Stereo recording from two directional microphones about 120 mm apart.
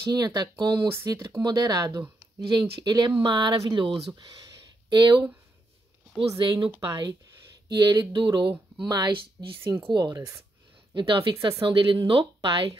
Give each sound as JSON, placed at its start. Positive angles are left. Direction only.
{"t": 0.1, "sound": "speech", "side_deg": -35}
{"t": 6.3, "sound": "speech", "side_deg": -40}
{"t": 9.6, "sound": "speech", "side_deg": -20}
{"t": 9.8, "sound": "speech", "side_deg": -35}